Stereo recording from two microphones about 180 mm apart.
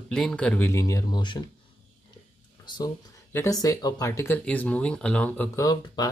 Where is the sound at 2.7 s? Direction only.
15° left (ahead or behind).